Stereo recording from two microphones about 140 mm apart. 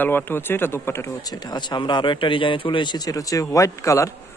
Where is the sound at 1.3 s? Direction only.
30° left (ahead or behind).